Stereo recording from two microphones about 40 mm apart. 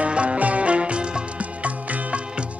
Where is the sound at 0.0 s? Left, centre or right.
Right.